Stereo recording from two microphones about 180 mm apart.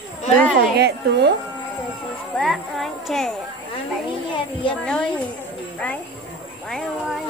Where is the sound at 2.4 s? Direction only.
Centre (ahead or behind).